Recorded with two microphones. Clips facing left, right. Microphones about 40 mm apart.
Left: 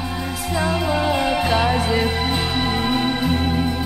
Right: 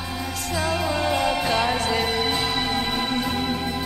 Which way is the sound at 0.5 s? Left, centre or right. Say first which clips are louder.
Left 3 dB; centre.